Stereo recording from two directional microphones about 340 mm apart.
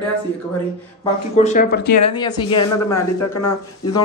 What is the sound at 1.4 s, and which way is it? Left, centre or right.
Speech, left.